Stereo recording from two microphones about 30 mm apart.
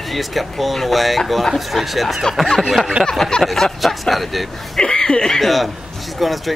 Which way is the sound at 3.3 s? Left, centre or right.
Left.